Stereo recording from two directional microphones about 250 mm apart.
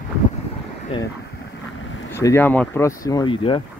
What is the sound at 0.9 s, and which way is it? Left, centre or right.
Speech, left.